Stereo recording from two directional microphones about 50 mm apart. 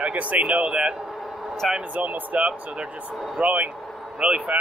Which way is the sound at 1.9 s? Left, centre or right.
Right.